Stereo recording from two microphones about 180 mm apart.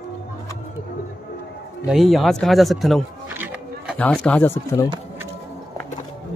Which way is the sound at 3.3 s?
10° right (ahead or behind).